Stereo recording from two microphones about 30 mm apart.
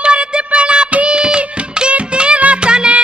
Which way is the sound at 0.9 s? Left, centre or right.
Right.